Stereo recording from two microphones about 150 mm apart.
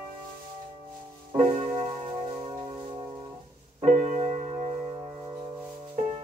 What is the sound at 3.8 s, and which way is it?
Music, 55° right (ahead or behind).